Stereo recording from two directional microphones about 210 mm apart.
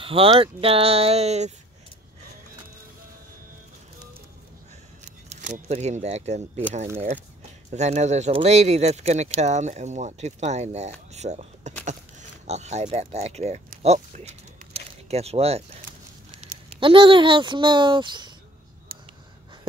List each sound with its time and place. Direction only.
0.0 s speech: 25° right (ahead or behind)
5.0 s speech: 35° right (ahead or behind)
7.7 s speech: 35° right (ahead or behind)
18.9 s a sound: 45° right (ahead or behind)